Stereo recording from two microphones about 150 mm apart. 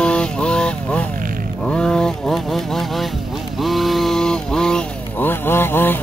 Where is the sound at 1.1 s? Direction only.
70° right (ahead or behind).